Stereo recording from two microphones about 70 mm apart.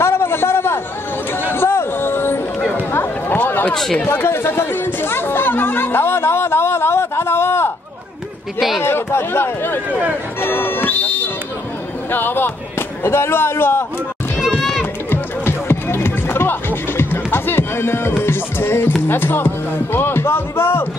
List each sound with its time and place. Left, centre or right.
0.0 s a sound: left
2.7 s chatter: left
3.7 s speech: centre
4.1 s music: left
8.5 s speech: centre
8.8 s speech: left
10.4 s music: left
12.1 s speech: left
15.0 s music: left
19.0 s speech: left